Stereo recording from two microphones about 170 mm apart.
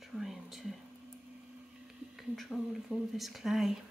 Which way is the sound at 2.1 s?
Centre (ahead or behind).